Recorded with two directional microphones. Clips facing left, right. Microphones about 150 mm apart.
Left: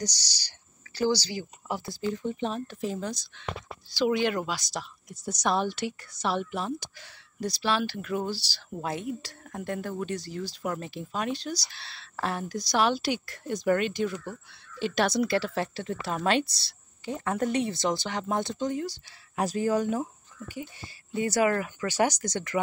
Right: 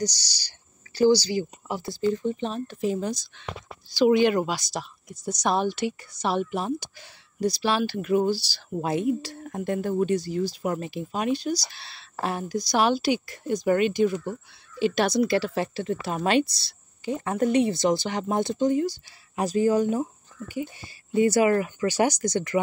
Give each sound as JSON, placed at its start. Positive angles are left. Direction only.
{"t": 0.0, "sound": "speech", "side_deg": -5}
{"t": 2.9, "sound": "speech", "side_deg": -10}
{"t": 5.1, "sound": "speech", "side_deg": 0}
{"t": 13.3, "sound": "speech", "side_deg": -15}
{"t": 14.1, "sound": "speech", "side_deg": -20}
{"t": 14.8, "sound": "speech", "side_deg": -5}